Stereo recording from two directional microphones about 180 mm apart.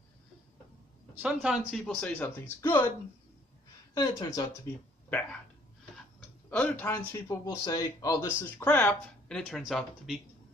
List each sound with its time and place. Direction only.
1.2 s speech: centre (ahead or behind)
3.9 s speech: 20° left (ahead or behind)
6.5 s speech: 10° left (ahead or behind)
7.1 s speech: 20° left (ahead or behind)
9.5 s speech: centre (ahead or behind)